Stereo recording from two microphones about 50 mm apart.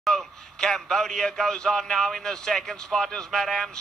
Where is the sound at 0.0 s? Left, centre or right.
Centre.